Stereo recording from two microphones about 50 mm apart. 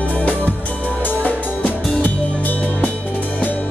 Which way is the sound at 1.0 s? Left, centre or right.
Left.